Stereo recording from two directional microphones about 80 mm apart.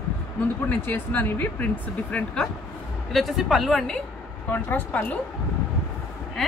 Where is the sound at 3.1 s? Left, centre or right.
Centre.